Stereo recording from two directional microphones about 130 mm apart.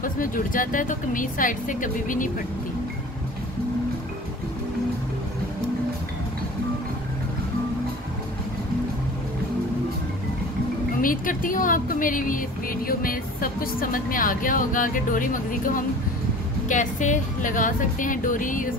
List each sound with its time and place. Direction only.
0.0 s speech: 90° left
11.0 s speech: 90° left
16.6 s speech: 75° left (ahead or behind); by 18.8 s 90° left